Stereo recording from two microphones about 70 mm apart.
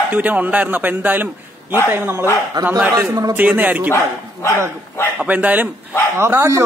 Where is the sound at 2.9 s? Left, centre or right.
Right.